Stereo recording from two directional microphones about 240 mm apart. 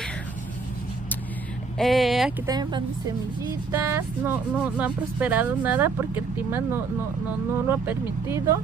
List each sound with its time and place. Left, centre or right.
1.8 s speech: centre
2.4 s speech: centre